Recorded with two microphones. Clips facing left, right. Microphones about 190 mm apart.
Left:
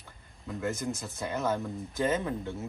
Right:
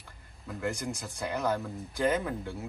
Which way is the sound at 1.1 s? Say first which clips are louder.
Right 1 dB; 15° right (ahead or behind).